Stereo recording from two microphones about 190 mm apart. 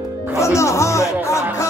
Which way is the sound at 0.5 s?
15° left (ahead or behind).